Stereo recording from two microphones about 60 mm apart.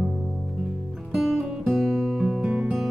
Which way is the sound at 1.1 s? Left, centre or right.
Centre.